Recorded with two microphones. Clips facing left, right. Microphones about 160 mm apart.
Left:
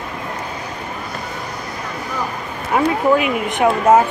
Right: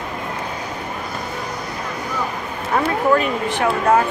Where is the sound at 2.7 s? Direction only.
10° left (ahead or behind).